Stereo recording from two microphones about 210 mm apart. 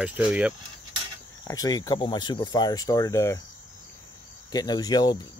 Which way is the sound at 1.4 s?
15° left (ahead or behind).